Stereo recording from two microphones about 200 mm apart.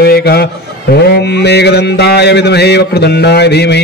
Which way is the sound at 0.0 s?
50° left (ahead or behind).